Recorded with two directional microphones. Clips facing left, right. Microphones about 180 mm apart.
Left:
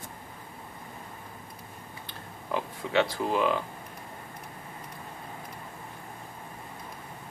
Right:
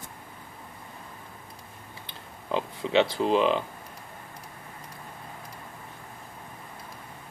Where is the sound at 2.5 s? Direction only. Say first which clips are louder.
Right 3 dB; 20° right (ahead or behind).